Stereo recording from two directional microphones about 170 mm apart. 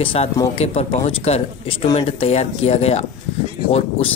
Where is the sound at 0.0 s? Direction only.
30° left (ahead or behind).